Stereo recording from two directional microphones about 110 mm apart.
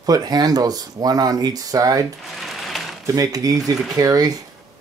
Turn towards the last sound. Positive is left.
turn(degrees=-35)  # may be behind; listen again after turning